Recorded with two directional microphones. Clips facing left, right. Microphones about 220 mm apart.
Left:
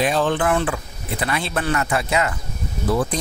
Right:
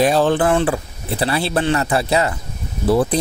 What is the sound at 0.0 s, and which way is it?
Speech, 35° right (ahead or behind).